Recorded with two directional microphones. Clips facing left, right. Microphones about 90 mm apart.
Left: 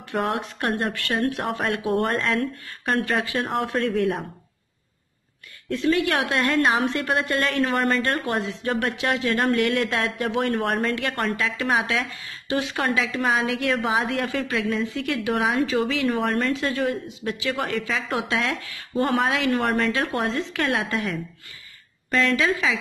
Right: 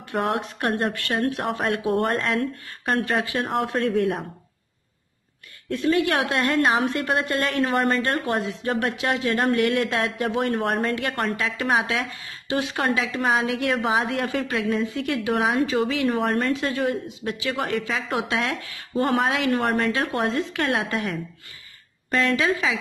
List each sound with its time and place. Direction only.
0.1 s a woman's voice: 30° right (ahead or behind)
5.8 s a woman's voice: 25° right (ahead or behind)